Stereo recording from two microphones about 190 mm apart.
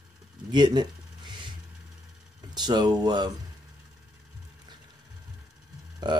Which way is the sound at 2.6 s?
20° right (ahead or behind).